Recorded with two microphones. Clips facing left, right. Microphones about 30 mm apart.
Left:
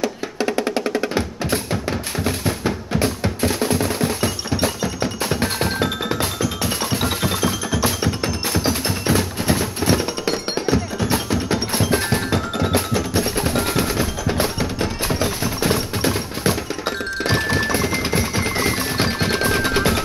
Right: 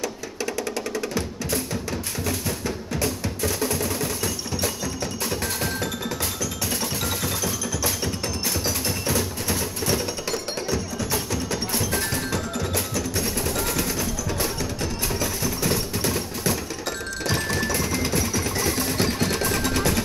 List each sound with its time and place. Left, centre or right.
0.0 s music: left